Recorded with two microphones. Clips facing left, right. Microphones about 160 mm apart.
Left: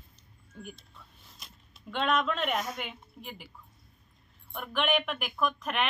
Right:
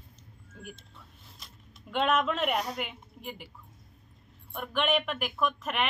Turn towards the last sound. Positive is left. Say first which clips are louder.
# even
turn(degrees=0)  # may be behind; listen again after turning